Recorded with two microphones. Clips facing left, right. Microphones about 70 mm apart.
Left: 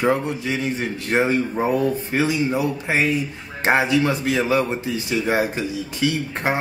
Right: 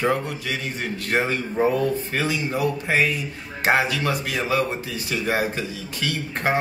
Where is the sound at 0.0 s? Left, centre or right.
Left.